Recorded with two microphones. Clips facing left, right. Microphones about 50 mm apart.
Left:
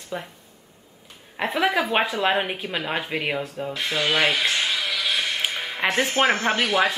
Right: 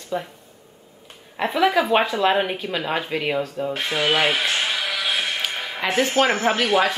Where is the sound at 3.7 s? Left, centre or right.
Right.